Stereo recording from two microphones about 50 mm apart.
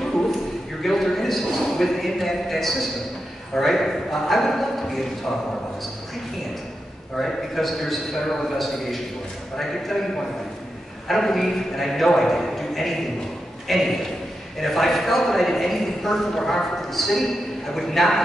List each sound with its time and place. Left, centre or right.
0.8 s a man's voice: centre
7.2 s a man's voice: centre
11.1 s a man's voice: centre